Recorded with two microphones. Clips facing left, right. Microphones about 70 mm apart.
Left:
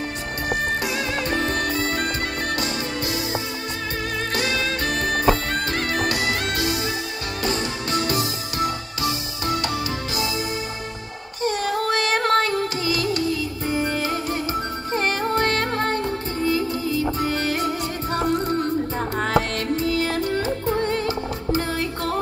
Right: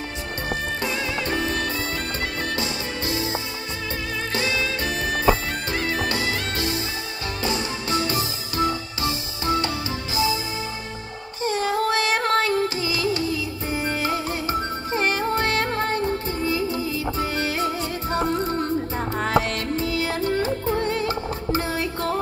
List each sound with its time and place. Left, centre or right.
1.3 s music: left
3.0 s music: right
4.3 s music: left
7.9 s music: right
11.4 s music: right
12.3 s music: left
15.0 s music: left
17.6 s music: right
19.1 s music: left
20.2 s music: right
20.7 s music: left
21.1 s music: right